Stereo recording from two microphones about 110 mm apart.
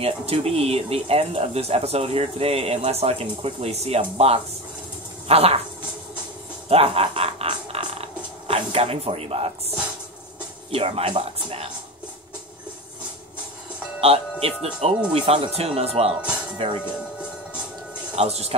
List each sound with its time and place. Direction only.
0.0 s speech: 65° right (ahead or behind)
6.7 s a sound: 60° right (ahead or behind)
10.7 s speech: 65° right (ahead or behind)
14.0 s speech: 65° right (ahead or behind)
18.1 s speech: 70° right (ahead or behind)